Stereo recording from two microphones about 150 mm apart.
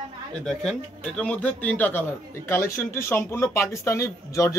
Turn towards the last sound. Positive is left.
turn(degrees=20)  # may be behind; listen again after turning